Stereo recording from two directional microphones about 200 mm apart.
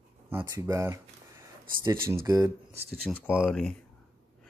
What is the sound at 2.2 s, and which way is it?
Speech, 15° right (ahead or behind).